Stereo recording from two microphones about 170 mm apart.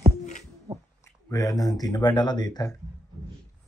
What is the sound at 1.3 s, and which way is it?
Speech, 20° left (ahead or behind).